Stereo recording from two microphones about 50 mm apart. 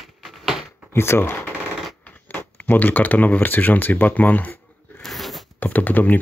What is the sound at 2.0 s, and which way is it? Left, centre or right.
Speech, left.